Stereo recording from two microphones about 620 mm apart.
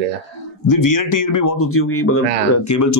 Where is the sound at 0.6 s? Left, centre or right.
Left.